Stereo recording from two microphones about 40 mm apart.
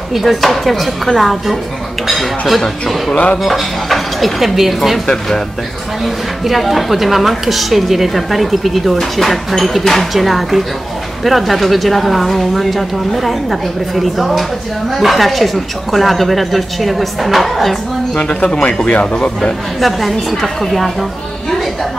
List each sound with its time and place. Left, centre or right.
0.1 s speech: centre
5.0 s speech: centre
6.0 s speech: centre
18.1 s speech: left
19.8 s speech: centre